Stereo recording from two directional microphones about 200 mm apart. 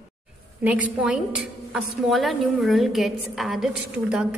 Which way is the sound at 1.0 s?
5° right (ahead or behind).